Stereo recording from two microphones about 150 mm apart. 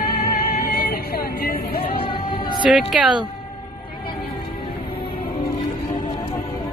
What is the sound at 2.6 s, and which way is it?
Speech, 5° right (ahead or behind).